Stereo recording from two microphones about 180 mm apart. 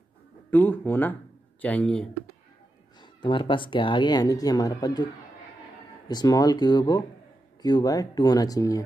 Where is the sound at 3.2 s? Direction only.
25° left (ahead or behind).